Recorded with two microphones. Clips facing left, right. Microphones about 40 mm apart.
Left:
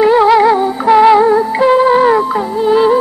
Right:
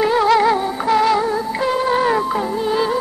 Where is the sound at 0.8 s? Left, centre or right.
Left.